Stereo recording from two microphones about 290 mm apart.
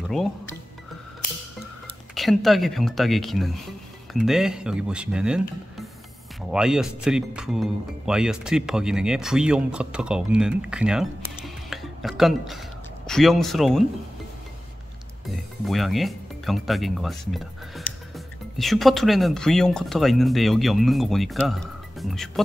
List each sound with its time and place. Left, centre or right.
2.1 s speech: centre
6.5 s speech: centre
11.4 s a sound: centre
15.2 s speech: centre